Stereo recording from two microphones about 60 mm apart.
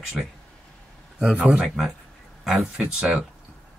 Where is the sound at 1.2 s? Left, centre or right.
Centre.